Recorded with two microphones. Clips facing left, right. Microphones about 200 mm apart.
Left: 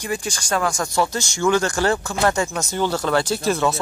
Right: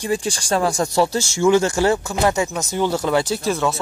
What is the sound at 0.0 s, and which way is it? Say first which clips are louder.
Speech: right 4 dB; 30° right (ahead or behind).